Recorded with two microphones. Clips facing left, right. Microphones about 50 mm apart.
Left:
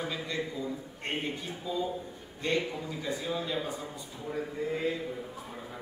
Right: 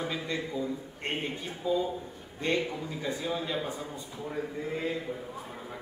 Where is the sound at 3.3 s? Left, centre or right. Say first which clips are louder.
Even; centre.